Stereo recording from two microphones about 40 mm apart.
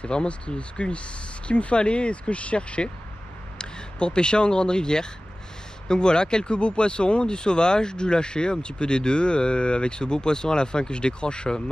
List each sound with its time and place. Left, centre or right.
0.0 s speech: left